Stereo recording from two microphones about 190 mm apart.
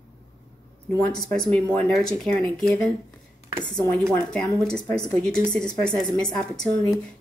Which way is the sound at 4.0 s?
5° left (ahead or behind).